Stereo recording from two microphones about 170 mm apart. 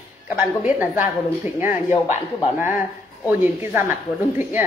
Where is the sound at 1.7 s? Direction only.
45° left (ahead or behind).